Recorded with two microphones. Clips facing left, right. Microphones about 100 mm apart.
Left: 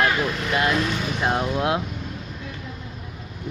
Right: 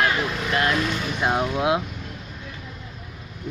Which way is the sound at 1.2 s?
5° right (ahead or behind).